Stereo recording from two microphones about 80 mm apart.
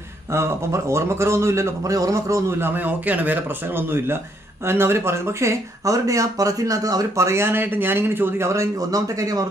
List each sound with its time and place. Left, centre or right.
0.3 s speech: right
2.7 s speech: right